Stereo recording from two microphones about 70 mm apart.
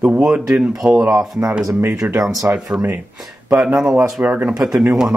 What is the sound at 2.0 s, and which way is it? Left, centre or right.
Speech, right.